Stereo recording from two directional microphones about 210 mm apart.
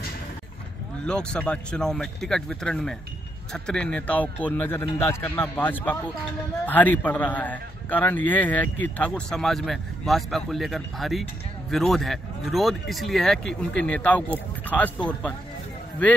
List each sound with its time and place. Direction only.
1.0 s a man's voice: 5° left (ahead or behind)